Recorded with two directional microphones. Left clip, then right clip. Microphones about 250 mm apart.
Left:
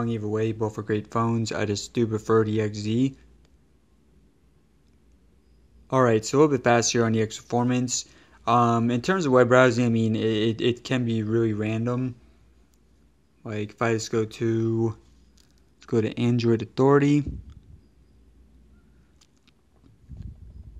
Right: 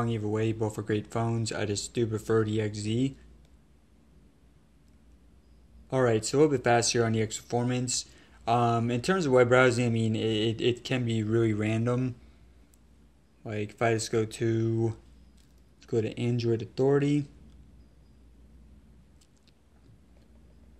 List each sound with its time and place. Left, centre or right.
0.0 s speech: centre
5.9 s speech: left
13.4 s speech: left